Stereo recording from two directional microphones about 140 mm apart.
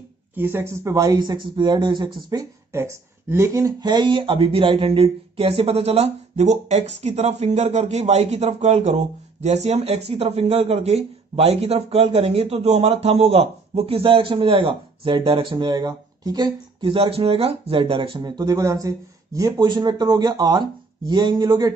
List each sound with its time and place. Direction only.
0.3 s speech: 15° right (ahead or behind); by 2.0 s 35° right (ahead or behind)
2.2 s speech: 20° right (ahead or behind)